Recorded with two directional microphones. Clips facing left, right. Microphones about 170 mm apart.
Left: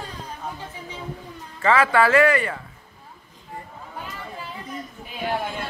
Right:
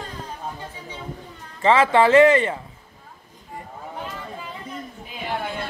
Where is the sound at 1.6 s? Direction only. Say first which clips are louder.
Right 2 dB; 20° right (ahead or behind).